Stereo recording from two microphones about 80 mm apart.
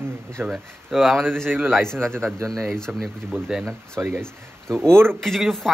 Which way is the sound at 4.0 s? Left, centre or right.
Right.